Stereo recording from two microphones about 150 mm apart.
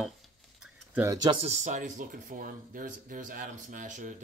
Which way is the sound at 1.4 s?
50° right (ahead or behind).